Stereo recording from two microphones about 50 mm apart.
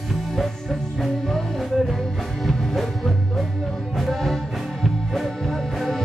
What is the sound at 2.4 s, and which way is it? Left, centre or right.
Music, centre.